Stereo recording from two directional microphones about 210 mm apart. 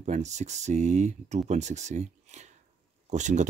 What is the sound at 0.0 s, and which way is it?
Speech, 35° right (ahead or behind).